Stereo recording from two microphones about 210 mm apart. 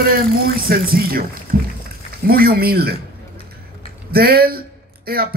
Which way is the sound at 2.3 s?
45° right (ahead or behind).